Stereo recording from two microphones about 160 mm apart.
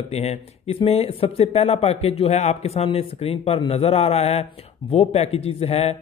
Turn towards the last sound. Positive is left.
turn(degrees=40)  # may be behind; listen again after turning